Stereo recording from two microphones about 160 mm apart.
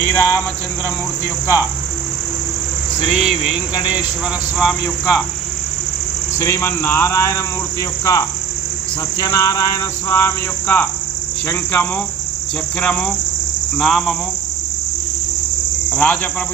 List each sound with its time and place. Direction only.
0.1 s cricket: 20° left (ahead or behind)
3.1 s a man's voice: 5° right (ahead or behind)
4.6 s a man's voice: centre (ahead or behind)
6.4 s speech: 15° left (ahead or behind)
8.0 s cricket: 20° left (ahead or behind)
11.4 s a man's voice: 10° left (ahead or behind)
15.9 s cricket: 10° left (ahead or behind)